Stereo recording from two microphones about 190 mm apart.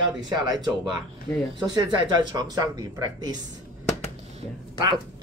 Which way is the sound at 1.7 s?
20° right (ahead or behind).